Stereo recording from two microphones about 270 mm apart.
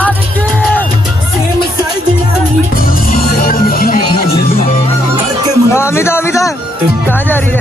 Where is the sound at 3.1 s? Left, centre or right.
Left.